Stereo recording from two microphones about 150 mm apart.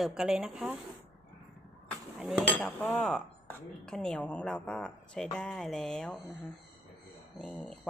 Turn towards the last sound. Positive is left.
turn(degrees=10)  # may be behind; listen again after turning